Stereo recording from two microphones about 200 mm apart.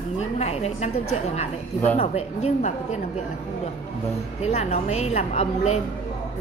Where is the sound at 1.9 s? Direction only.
30° left (ahead or behind).